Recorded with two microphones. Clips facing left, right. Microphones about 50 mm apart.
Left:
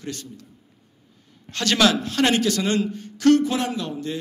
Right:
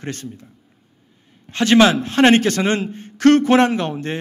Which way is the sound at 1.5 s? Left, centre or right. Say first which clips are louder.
Right 6 dB; right.